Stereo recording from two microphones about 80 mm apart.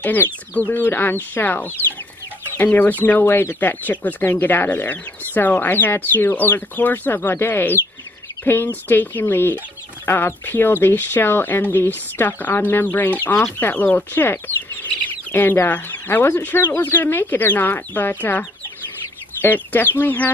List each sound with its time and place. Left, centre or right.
0.0 s speech: left
19.4 s speech: left